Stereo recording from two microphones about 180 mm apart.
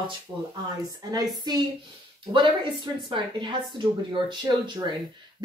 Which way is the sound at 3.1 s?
25° right (ahead or behind).